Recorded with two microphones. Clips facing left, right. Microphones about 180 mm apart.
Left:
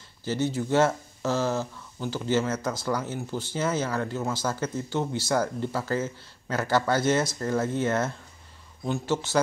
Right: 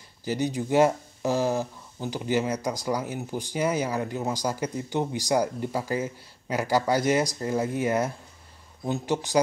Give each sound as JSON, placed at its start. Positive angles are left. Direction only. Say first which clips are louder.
{"t": 0.2, "sound": "speech", "louder": "even", "side_deg": -15}